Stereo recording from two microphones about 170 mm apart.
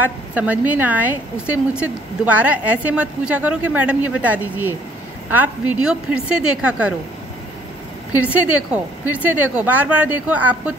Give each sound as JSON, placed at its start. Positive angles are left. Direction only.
{"t": 0.3, "sound": "a woman's voice", "side_deg": -10}
{"t": 8.1, "sound": "a woman's voice", "side_deg": -10}